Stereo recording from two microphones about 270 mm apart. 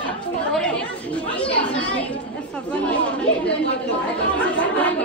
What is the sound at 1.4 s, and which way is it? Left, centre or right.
Chatter, centre.